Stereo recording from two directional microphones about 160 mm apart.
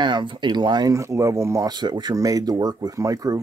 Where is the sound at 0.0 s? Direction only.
30° right (ahead or behind).